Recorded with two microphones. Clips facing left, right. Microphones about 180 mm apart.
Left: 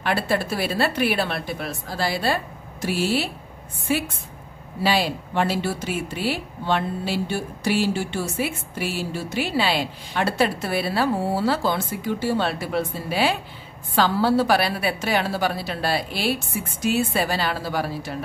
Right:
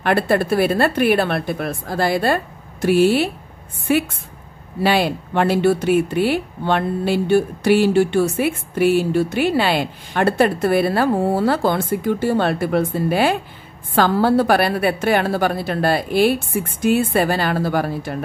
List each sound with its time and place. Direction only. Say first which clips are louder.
0.0 s a woman's voice: right 6 dB; 55° right (ahead or behind)